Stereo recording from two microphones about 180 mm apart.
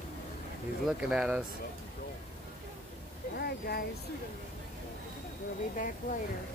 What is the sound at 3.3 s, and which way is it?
Speech, 60° left (ahead or behind).